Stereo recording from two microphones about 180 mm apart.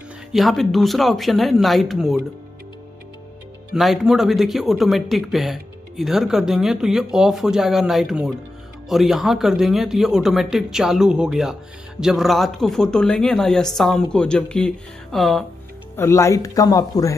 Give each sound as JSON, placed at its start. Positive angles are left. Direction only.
{"t": 0.3, "sound": "speech", "side_deg": 0}
{"t": 3.7, "sound": "speech", "side_deg": 0}
{"t": 16.0, "sound": "speech", "side_deg": 15}